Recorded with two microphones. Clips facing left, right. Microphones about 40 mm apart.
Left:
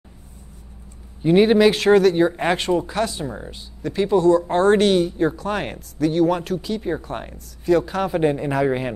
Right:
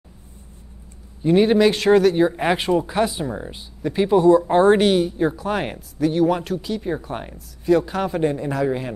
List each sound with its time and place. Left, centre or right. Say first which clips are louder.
1.2 s speech: left 1 dB; centre
8.1 s speech: left 2 dB; centre